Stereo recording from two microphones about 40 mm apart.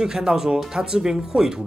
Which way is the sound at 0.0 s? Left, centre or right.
Centre.